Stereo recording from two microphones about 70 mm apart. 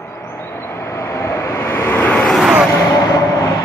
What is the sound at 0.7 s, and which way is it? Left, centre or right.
Vehicle, left.